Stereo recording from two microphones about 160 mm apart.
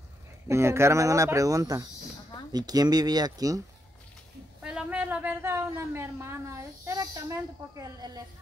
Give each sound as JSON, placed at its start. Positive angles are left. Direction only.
{"t": 0.5, "sound": "speech", "side_deg": -15}
{"t": 4.6, "sound": "a woman's voice", "side_deg": -5}